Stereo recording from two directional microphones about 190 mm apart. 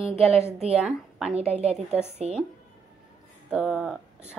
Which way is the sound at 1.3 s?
35° right (ahead or behind).